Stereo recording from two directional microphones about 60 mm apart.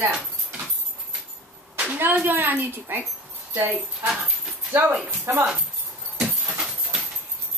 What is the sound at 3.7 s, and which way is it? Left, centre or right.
Speech, centre.